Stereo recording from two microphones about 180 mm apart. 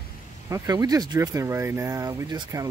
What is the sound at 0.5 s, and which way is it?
Speech, 20° right (ahead or behind).